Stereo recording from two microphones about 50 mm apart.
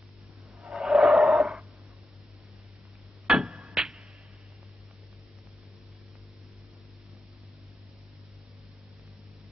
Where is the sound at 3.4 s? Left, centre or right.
Right.